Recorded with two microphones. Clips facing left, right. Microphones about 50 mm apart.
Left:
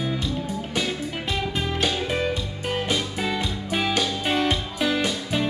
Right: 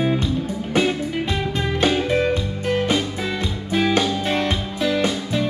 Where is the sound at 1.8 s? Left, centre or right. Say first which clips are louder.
Right 7 dB; right.